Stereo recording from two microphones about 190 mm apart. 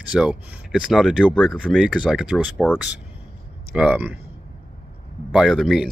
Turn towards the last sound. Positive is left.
turn(degrees=0)  # may be behind; listen again after turning